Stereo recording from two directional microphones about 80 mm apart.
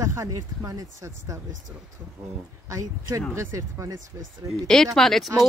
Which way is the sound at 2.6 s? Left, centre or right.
Right.